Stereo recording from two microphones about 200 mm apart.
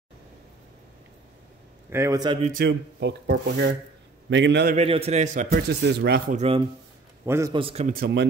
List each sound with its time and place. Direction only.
1.9 s a man's voice: 15° right (ahead or behind)
2.6 s speech: 60° right (ahead or behind)
4.7 s speech: 30° right (ahead or behind); by 6.2 s 55° right (ahead or behind)
6.3 s a man's voice: 30° right (ahead or behind)
7.2 s a man's voice: 15° right (ahead or behind)
7.5 s a man's voice: 30° right (ahead or behind)
7.9 s speech: 55° right (ahead or behind)